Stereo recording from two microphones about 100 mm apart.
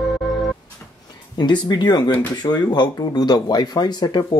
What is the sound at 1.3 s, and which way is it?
Speech, 50° left (ahead or behind).